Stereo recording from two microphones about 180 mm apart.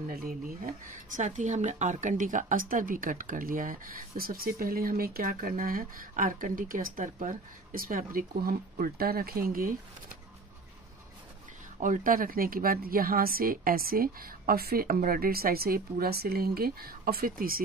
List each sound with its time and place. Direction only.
0.1 s a woman's voice: 55° right (ahead or behind)
1.1 s speech: 40° right (ahead or behind)
11.8 s a woman's voice: 50° right (ahead or behind)